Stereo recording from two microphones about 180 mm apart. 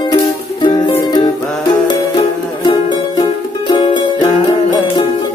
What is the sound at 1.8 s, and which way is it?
Music, 25° left (ahead or behind).